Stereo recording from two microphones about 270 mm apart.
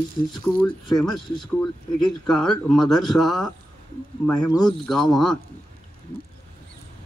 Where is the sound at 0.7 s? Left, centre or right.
Centre.